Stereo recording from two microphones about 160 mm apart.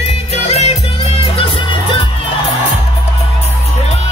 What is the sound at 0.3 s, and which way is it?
Music, 40° left (ahead or behind).